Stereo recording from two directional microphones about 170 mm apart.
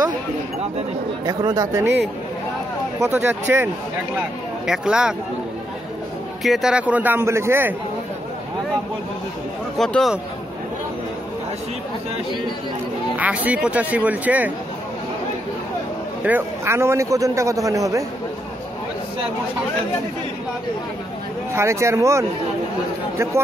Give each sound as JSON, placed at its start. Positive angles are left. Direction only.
{"t": 1.2, "sound": "speech", "side_deg": -25}
{"t": 3.0, "sound": "a man's voice", "side_deg": -10}
{"t": 6.4, "sound": "a man's voice", "side_deg": 0}
{"t": 9.8, "sound": "speech", "side_deg": 0}
{"t": 13.2, "sound": "a man's voice", "side_deg": -10}
{"t": 16.3, "sound": "a man's voice", "side_deg": -15}
{"t": 21.5, "sound": "a man's voice", "side_deg": -15}